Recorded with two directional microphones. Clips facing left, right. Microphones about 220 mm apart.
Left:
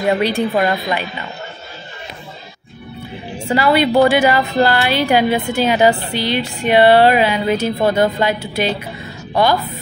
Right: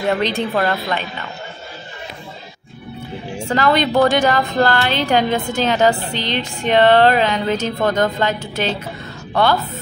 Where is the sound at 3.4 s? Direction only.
10° left (ahead or behind).